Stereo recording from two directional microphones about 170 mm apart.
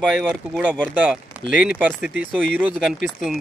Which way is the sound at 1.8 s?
5° right (ahead or behind).